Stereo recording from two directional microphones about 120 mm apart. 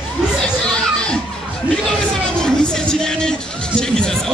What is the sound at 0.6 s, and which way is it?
Music, 5° left (ahead or behind).